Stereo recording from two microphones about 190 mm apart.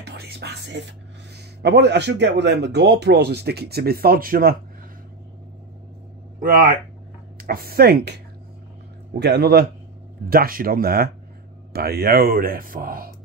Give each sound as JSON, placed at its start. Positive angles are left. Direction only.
{"t": 0.0, "sound": "speech", "side_deg": -60}
{"t": 6.4, "sound": "speech", "side_deg": -45}
{"t": 9.2, "sound": "a man's voice", "side_deg": -60}